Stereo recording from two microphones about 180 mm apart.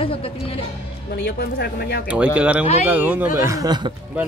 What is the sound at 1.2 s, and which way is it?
Speech, 60° left (ahead or behind).